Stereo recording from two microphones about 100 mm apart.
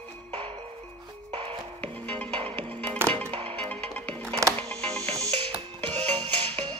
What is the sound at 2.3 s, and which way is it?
Music, 75° right (ahead or behind).